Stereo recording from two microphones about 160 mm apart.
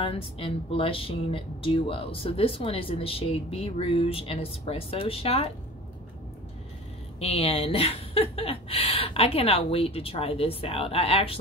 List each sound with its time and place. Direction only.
0.0 s speech: 35° left (ahead or behind)
7.2 s speech: 40° left (ahead or behind)